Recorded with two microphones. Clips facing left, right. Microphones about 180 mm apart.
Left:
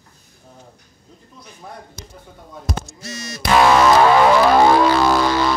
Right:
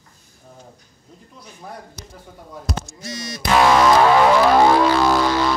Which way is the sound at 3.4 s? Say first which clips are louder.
Left 1 dB; 70° left (ahead or behind).